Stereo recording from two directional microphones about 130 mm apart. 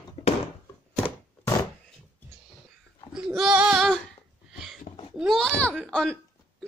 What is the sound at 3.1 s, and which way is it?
Child singing, 5° right (ahead or behind).